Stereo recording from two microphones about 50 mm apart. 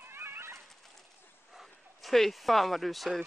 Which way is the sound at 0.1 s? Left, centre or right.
Right.